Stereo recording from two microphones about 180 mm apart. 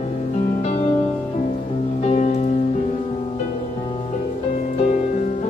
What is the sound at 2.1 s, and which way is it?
Music, 40° left (ahead or behind).